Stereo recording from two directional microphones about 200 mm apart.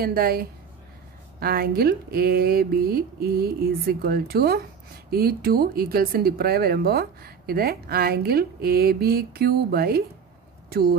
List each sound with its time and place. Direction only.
0.0 s speech: 50° right (ahead or behind)